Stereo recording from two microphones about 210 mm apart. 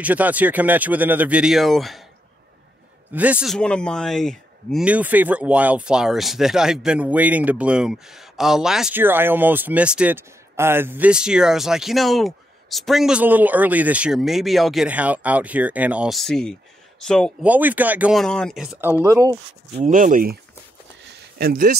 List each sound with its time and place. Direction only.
0.0 s speech: 5° right (ahead or behind)
3.1 s speech: 5° right (ahead or behind)
17.5 s speech: 10° right (ahead or behind)
19.8 s speech: 40° right (ahead or behind)
21.0 s a sound: 55° right (ahead or behind)